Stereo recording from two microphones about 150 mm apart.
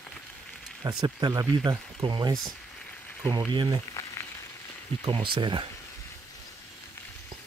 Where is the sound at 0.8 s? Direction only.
30° right (ahead or behind).